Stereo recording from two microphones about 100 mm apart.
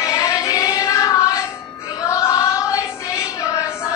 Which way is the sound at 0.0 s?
35° left (ahead or behind).